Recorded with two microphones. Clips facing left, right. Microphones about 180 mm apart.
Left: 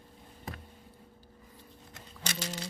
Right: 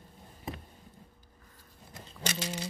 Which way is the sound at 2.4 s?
10° right (ahead or behind).